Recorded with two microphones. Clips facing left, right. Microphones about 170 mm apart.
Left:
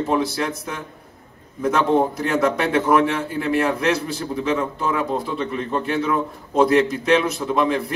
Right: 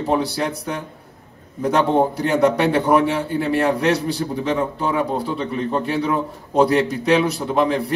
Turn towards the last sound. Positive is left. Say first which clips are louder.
# right 1 dB
turn(degrees=-35)  # may be behind; listen again after turning